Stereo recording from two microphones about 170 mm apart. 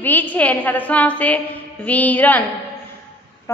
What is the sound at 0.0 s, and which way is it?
A woman's voice, 10° left (ahead or behind).